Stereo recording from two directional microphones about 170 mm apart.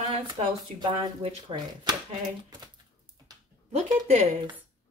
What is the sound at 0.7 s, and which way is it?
Speech, 25° right (ahead or behind).